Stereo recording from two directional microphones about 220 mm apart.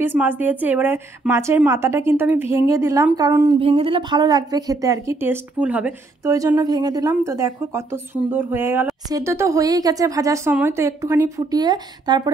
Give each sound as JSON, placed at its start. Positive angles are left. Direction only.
{"t": 0.0, "sound": "a woman's voice", "side_deg": -10}